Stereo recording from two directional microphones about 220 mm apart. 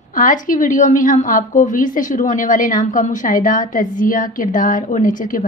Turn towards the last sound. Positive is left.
turn(degrees=35)  # may be behind; listen again after turning